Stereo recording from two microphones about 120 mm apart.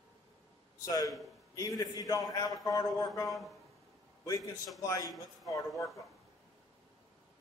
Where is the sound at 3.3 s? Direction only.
Centre (ahead or behind).